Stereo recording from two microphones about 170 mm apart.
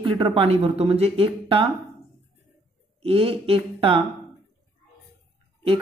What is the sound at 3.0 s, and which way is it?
Speech, 35° right (ahead or behind).